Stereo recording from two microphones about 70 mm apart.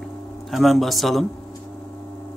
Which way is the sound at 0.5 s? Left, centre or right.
Centre.